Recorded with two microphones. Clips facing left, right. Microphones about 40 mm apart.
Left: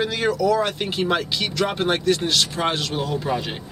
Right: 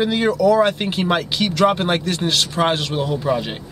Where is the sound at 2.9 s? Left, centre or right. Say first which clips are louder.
Right 4 dB; centre.